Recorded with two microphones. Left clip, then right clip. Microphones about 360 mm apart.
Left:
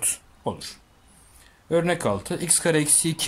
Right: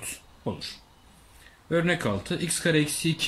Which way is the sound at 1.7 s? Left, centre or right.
Centre.